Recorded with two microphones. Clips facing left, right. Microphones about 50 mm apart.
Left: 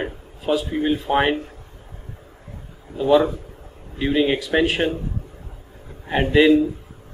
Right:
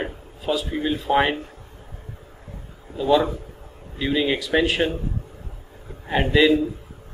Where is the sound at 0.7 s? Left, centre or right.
Centre.